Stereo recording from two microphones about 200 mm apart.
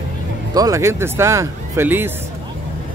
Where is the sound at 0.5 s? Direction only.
15° right (ahead or behind).